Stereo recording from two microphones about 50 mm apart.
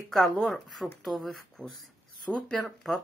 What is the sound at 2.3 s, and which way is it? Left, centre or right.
Speech, centre.